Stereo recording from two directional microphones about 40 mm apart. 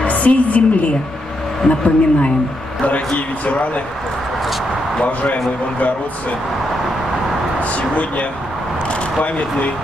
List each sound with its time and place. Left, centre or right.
0.0 s a woman's voice: left
3.4 s a woman's voice: left
5.0 s a woman's voice: left
7.7 s speech: left